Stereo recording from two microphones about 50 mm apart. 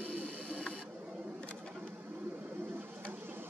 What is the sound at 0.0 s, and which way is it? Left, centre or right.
Printer, right.